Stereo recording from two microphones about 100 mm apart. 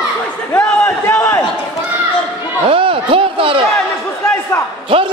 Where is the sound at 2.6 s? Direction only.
65° right (ahead or behind).